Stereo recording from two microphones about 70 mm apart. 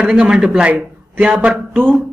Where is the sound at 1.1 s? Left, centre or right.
Right.